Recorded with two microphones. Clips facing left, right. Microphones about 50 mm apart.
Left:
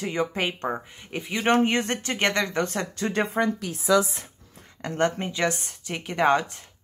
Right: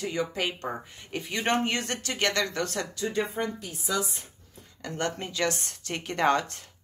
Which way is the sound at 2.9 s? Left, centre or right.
Left.